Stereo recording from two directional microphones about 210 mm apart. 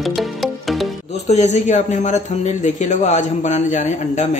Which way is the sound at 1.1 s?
30° left (ahead or behind).